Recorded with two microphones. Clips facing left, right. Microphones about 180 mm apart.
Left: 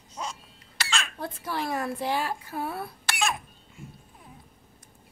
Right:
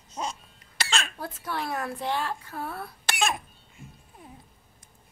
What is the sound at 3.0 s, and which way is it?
Cough, 20° right (ahead or behind).